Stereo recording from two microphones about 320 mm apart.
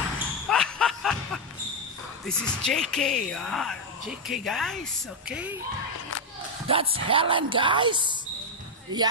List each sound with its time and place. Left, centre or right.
0.5 s a sound: centre
2.2 s speech: centre
6.7 s speech: centre